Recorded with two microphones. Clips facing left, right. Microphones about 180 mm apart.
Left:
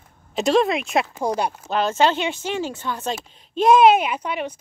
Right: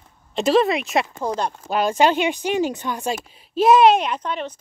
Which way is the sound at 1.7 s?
10° right (ahead or behind).